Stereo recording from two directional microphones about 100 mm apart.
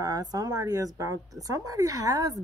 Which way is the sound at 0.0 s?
40° right (ahead or behind).